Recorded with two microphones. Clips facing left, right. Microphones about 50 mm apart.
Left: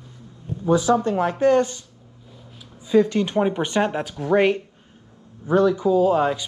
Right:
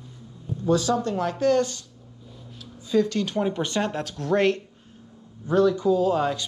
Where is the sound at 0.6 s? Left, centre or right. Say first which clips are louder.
Left 4 dB; centre.